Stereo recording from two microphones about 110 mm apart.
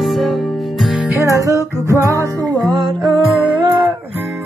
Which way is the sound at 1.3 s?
30° right (ahead or behind).